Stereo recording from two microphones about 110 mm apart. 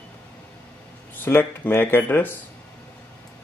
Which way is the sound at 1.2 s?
20° left (ahead or behind).